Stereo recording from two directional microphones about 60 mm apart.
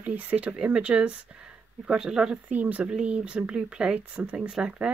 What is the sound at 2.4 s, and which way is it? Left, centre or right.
Speech, right.